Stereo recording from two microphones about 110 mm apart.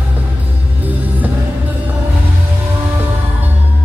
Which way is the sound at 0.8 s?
15° right (ahead or behind).